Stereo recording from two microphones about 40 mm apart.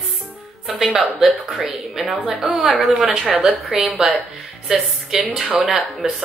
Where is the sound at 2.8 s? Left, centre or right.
Right.